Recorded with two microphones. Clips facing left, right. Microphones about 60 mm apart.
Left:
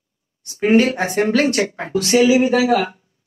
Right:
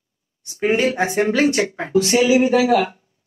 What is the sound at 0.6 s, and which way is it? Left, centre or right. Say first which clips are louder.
Speech: left 3 dB; centre.